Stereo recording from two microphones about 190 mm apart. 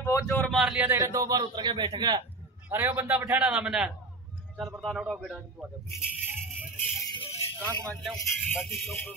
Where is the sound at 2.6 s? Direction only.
10° right (ahead or behind).